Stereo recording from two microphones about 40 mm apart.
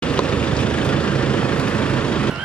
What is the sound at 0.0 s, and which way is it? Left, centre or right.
Vehicle, left.